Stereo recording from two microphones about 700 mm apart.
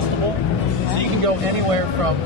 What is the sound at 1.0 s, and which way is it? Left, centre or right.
Speech, right.